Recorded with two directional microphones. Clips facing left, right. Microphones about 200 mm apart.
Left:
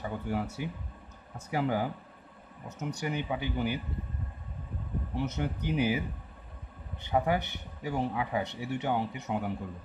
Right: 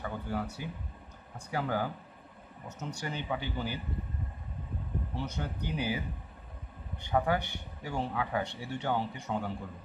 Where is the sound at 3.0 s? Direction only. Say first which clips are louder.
Left 3 dB; 15° left (ahead or behind).